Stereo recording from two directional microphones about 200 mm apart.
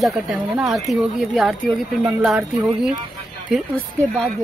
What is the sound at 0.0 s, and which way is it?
Speech, centre (ahead or behind).